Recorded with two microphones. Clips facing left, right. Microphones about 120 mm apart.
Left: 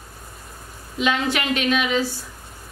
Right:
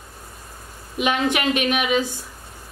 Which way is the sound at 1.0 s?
15° right (ahead or behind).